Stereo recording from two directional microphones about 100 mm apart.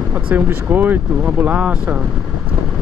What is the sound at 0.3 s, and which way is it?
Speech, 15° right (ahead or behind).